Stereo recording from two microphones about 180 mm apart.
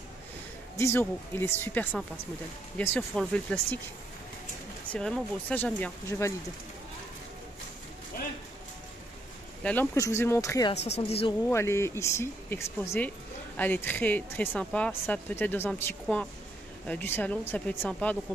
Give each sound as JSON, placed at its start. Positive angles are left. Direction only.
{"t": 0.7, "sound": "speech", "side_deg": 15}
{"t": 4.9, "sound": "speech", "side_deg": 5}
{"t": 9.6, "sound": "speech", "side_deg": 10}
{"t": 10.7, "sound": "speech", "side_deg": 35}
{"t": 11.4, "sound": "speech", "side_deg": 15}